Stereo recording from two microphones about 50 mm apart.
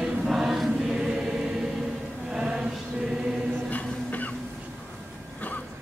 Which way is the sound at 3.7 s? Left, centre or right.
Left.